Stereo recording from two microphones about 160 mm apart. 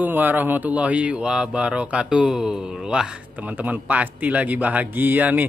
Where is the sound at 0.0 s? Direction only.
10° right (ahead or behind).